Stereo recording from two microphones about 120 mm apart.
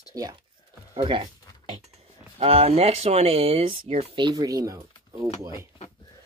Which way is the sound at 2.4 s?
55° right (ahead or behind).